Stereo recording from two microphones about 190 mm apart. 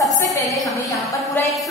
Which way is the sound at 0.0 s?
15° left (ahead or behind).